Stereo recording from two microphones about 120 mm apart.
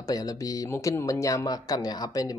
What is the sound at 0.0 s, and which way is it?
Speech, 30° left (ahead or behind).